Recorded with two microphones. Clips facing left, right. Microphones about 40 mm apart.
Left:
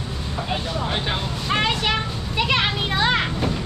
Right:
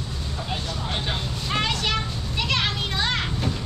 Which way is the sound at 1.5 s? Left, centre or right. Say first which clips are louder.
Left 3 dB; centre.